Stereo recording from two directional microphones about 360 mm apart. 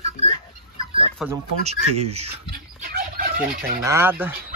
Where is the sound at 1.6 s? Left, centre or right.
Centre.